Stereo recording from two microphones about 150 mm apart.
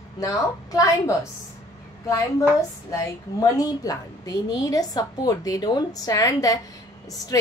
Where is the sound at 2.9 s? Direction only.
25° left (ahead or behind).